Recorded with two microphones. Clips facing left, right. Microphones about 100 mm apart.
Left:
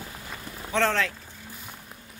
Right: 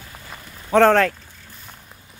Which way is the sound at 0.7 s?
50° right (ahead or behind).